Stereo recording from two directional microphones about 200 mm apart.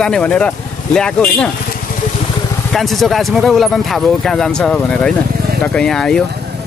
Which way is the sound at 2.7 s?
Centre (ahead or behind).